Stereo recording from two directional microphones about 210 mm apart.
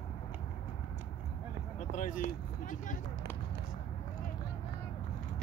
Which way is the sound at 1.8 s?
40° left (ahead or behind).